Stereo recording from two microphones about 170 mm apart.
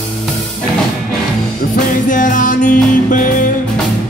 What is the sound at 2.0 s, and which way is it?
Music, 50° left (ahead or behind).